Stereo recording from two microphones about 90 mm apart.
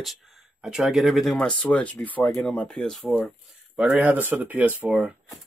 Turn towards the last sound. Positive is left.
turn(degrees=-20)  # may be behind; listen again after turning